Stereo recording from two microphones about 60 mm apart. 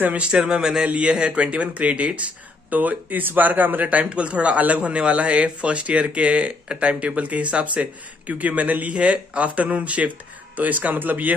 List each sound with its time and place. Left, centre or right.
0.0 s speech: right
0.4 s speech: centre; by 11.3 s right